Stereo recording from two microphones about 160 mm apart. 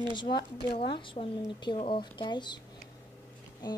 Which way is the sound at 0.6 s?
30° left (ahead or behind).